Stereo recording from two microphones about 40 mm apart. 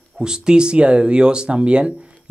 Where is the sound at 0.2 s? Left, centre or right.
Centre.